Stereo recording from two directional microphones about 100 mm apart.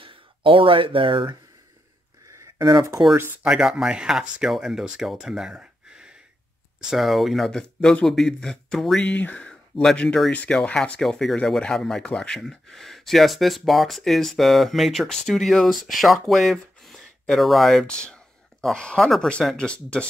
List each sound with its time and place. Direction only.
0.0 s speech: 60° right (ahead or behind)
2.2 s a sound: 35° right (ahead or behind)
3.4 s speech: 5° right (ahead or behind); by 20.1 s 10° left (ahead or behind)